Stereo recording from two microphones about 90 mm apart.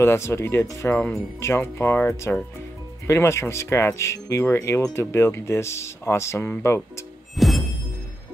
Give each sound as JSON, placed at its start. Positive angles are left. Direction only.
{"t": 0.0, "sound": "speech", "side_deg": 30}
{"t": 7.3, "sound": "music", "side_deg": 0}